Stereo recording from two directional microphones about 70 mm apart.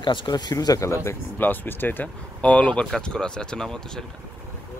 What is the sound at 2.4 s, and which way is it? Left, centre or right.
Speech, centre.